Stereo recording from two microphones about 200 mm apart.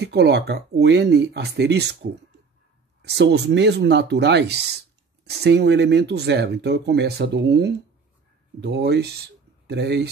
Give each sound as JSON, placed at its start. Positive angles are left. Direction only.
{"t": 0.0, "sound": "speech", "side_deg": -55}
{"t": 3.0, "sound": "speech", "side_deg": -55}